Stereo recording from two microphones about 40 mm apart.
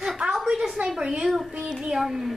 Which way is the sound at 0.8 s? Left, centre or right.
Right.